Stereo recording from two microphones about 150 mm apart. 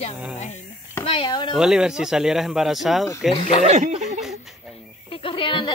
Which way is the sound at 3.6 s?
45° right (ahead or behind).